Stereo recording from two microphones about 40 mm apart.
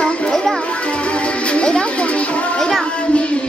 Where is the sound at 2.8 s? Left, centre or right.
Left.